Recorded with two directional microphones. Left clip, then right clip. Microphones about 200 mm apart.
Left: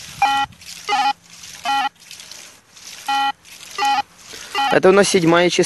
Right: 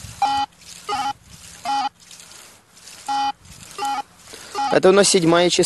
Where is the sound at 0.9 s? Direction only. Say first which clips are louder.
Left 6 dB; 15° left (ahead or behind).